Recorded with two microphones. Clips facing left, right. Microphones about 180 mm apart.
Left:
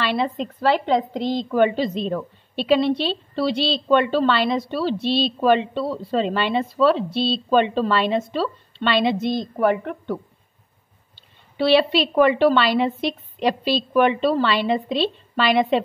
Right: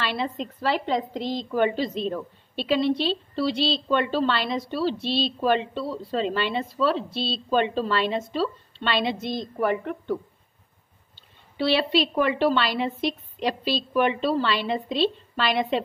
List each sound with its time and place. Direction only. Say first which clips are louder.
0.0 s a woman's voice: left 5 dB; 65° left (ahead or behind)
11.5 s a woman's voice: left 5 dB; 70° left (ahead or behind)